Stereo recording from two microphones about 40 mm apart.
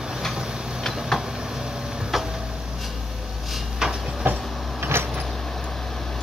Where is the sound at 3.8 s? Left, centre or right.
Centre.